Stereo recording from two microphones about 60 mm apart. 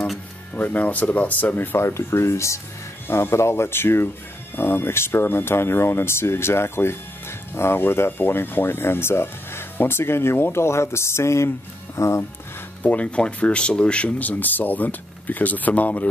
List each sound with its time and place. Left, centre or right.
0.6 s speech: left
1.8 s speech: left
3.1 s speech: left
12.8 s speech: left